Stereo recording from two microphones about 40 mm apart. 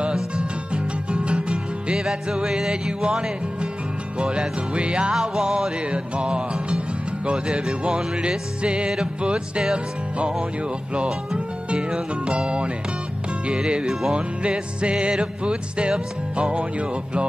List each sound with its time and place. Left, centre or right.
0.1 s music: right
5.2 s music: centre
5.9 s music: right
11.3 s speech: right
13.5 s music: right